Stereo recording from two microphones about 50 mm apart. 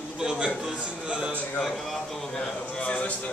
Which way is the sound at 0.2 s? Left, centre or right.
Centre.